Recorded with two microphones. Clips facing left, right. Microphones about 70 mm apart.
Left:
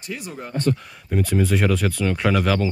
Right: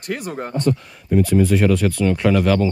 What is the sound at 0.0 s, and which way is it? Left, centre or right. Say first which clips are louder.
Speech: right 6 dB; right.